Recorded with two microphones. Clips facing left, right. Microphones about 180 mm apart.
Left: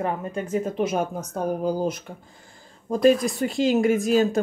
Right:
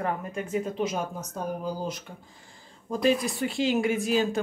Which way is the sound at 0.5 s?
50° left (ahead or behind).